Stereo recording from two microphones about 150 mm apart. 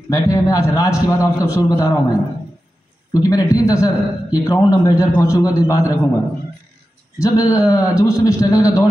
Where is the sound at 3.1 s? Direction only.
25° left (ahead or behind).